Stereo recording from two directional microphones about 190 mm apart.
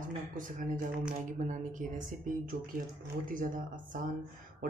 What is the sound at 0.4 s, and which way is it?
Speech, 40° right (ahead or behind).